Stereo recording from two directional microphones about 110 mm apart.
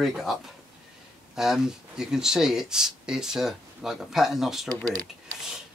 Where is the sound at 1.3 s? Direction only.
5° right (ahead or behind).